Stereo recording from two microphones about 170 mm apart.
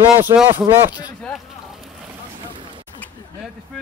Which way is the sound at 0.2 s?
10° right (ahead or behind).